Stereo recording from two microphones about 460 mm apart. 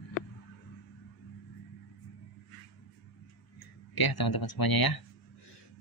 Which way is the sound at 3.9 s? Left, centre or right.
Left.